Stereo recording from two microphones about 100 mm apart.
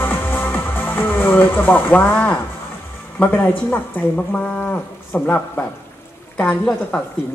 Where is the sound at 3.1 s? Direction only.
15° left (ahead or behind).